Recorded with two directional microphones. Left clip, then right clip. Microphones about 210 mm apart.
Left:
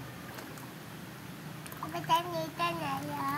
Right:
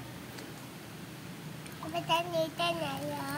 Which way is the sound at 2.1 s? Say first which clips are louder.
Even; 15° right (ahead or behind).